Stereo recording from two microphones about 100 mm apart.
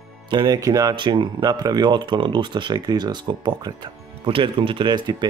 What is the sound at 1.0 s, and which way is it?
Speech, 50° right (ahead or behind).